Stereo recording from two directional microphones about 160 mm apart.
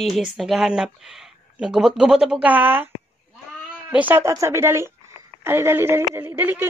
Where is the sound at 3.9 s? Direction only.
10° right (ahead or behind).